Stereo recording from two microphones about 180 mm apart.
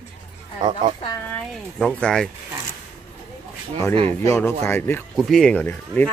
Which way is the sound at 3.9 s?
30° right (ahead or behind).